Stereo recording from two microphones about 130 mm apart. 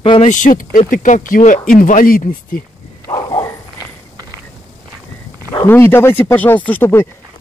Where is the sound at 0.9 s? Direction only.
80° left.